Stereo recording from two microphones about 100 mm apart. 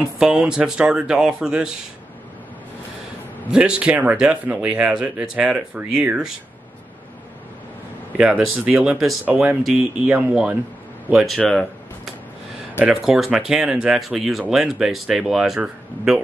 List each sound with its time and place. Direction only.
0.2 s speech: 10° right (ahead or behind)
3.5 s speech: 10° right (ahead or behind)
8.2 s speech: 10° right (ahead or behind)
9.6 s speech: centre (ahead or behind)
10.0 s speech: 15° right (ahead or behind)
11.2 s speech: 5° left (ahead or behind)
12.7 s speech: 10° right (ahead or behind)